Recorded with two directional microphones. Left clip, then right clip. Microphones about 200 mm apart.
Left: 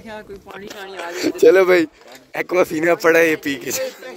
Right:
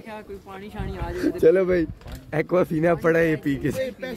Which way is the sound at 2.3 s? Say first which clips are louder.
Left 4 dB; 20° left (ahead or behind).